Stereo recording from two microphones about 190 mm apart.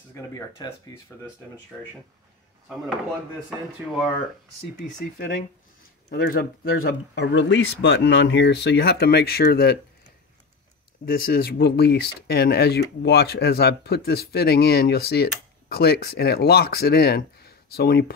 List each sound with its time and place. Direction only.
0.1 s speech: 15° left (ahead or behind)
6.0 s speech: 55° left (ahead or behind)
11.1 s speech: 50° left (ahead or behind)